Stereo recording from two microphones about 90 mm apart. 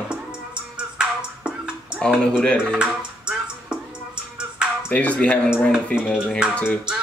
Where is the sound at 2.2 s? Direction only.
10° left (ahead or behind).